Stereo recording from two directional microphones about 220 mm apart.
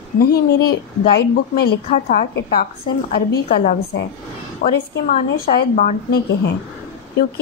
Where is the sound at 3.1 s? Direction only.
40° left (ahead or behind).